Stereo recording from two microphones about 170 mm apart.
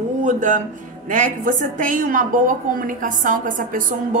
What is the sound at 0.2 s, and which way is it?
A woman's voice, 50° right (ahead or behind).